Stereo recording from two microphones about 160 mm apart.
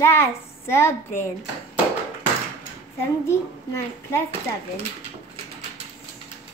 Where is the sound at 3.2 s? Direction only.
15° left (ahead or behind).